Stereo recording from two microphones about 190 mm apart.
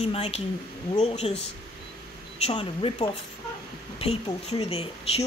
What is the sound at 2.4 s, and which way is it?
Speech, 25° left (ahead or behind).